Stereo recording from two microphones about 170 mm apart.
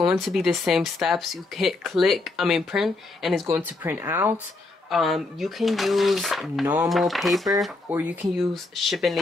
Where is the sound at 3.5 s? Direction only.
10° right (ahead or behind).